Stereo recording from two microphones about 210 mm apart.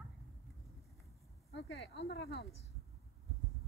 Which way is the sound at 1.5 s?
50° left (ahead or behind).